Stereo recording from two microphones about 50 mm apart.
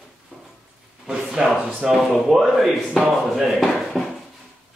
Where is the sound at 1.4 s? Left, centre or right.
Centre.